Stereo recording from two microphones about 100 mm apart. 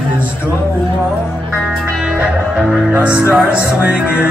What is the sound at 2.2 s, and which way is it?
Music, 5° right (ahead or behind).